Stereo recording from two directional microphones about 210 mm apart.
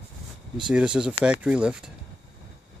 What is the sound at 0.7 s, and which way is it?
Speech, 5° right (ahead or behind).